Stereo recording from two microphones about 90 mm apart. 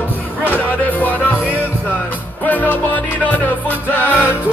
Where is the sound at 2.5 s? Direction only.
20° left (ahead or behind).